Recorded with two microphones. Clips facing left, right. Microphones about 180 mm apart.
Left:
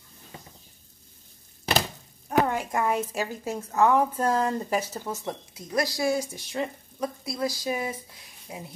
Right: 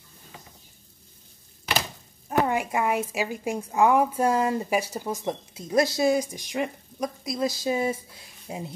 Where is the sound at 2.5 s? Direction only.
10° right (ahead or behind); by 8.6 s 25° right (ahead or behind).